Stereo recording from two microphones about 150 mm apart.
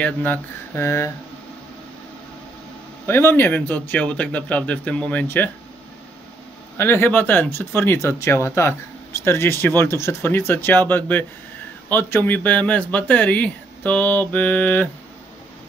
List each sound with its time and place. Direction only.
0.0 s speech: 10° left (ahead or behind)
3.1 s speech: 15° left (ahead or behind)
6.8 s speech: 15° left (ahead or behind)